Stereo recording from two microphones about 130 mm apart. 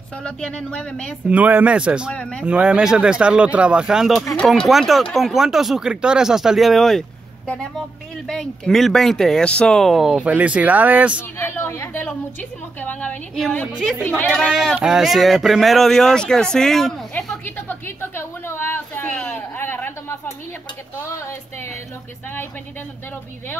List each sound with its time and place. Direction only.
0.2 s speech: 5° left (ahead or behind)
1.3 s speech: 10° right (ahead or behind)
2.1 s speech: 10° left (ahead or behind)
2.4 s speech: 10° right (ahead or behind)
11.3 s speech: 20° left (ahead or behind)
17.6 s a sound: 15° left (ahead or behind)